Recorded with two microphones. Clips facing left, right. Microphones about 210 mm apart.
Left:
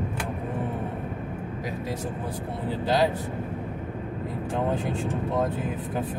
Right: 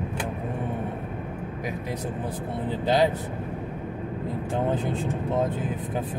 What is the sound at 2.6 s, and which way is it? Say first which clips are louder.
Speech: right 1 dB; 20° right (ahead or behind).